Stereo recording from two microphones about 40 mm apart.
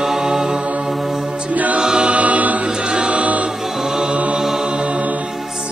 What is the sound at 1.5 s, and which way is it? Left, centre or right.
A capella, right.